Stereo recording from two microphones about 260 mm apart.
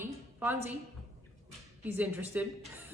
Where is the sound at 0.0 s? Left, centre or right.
Centre.